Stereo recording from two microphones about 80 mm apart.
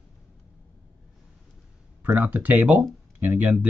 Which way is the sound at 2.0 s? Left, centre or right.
Centre.